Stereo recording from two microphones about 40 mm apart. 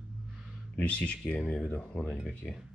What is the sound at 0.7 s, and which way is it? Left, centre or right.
Speech, left.